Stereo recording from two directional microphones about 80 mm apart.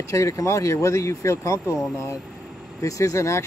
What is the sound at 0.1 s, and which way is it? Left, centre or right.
Speech, left.